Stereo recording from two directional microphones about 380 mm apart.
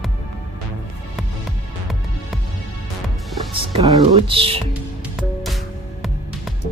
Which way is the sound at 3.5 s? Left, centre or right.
Centre.